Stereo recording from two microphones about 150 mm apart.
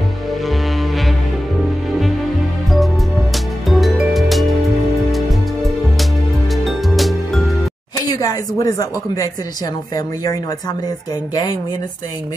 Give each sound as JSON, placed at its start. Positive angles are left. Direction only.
{"t": 1.9, "sound": "music", "side_deg": 0}
{"t": 3.6, "sound": "music", "side_deg": 0}
{"t": 8.1, "sound": "a woman's voice", "side_deg": 25}